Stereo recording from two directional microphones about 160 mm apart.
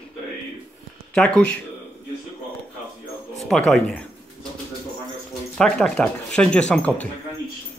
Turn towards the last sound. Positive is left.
turn(degrees=10)  # may be behind; listen again after turning